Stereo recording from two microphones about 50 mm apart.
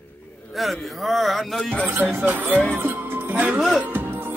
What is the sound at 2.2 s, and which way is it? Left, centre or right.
Speech, right.